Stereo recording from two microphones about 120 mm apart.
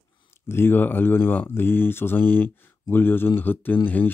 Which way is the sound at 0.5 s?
20° left (ahead or behind).